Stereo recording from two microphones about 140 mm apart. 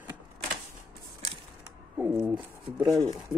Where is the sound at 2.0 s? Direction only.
10° right (ahead or behind).